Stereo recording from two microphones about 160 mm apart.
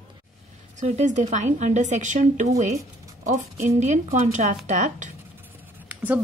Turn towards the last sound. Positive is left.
turn(degrees=-10)  # may be behind; listen again after turning